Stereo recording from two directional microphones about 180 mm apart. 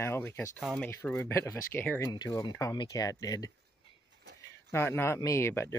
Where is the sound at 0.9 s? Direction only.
15° left (ahead or behind).